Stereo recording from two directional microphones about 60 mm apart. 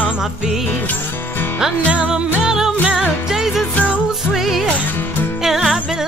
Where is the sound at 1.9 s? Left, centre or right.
Centre.